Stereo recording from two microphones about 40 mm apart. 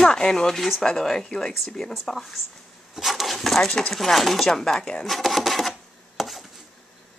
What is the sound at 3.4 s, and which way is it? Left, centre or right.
Speech, centre.